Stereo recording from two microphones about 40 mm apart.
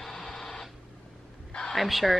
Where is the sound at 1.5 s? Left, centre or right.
Centre.